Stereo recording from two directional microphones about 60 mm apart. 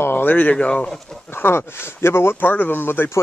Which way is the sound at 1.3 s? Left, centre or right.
Left.